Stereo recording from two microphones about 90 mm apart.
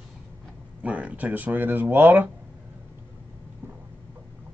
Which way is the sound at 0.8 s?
15° right (ahead or behind).